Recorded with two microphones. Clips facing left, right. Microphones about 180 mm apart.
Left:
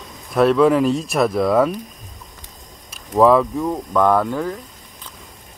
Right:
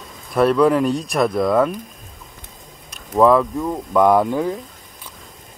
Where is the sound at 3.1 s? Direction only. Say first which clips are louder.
Even; centre (ahead or behind).